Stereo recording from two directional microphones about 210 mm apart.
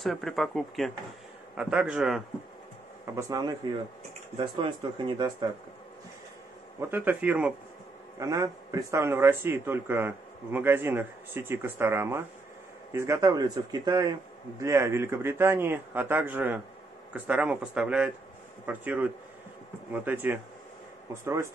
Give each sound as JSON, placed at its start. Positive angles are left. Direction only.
{"t": 0.0, "sound": "speech", "side_deg": 0}
{"t": 3.2, "sound": "speech", "side_deg": -15}
{"t": 6.9, "sound": "speech", "side_deg": -10}